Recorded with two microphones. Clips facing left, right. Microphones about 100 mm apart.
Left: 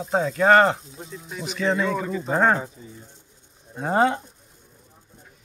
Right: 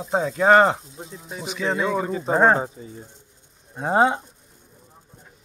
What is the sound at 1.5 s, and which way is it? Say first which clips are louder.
Speech: left 1 dB; 10° right (ahead or behind).